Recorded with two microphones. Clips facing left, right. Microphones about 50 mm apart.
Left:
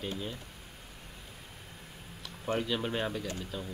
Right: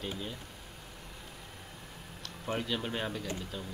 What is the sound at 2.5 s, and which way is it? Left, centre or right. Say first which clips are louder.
Speech: left 2 dB; centre.